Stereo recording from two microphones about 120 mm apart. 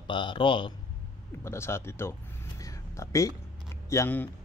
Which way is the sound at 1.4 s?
20° left (ahead or behind).